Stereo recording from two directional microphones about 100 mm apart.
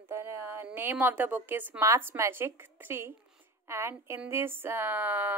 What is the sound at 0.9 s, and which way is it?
A woman's voice, 20° right (ahead or behind).